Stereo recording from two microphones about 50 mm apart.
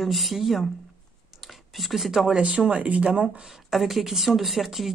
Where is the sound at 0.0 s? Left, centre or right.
Centre.